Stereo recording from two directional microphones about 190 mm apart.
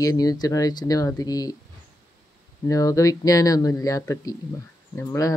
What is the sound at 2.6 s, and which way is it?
Speech, 15° left (ahead or behind).